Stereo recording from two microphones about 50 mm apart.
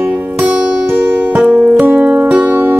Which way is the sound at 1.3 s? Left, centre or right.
Right.